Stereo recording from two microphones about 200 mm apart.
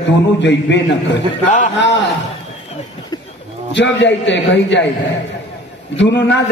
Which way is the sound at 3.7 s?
65° left (ahead or behind).